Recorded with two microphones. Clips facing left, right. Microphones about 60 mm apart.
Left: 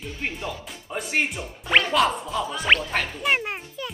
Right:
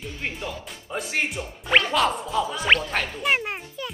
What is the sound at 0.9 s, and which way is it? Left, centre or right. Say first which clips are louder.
Speech: left 1 dB; centre.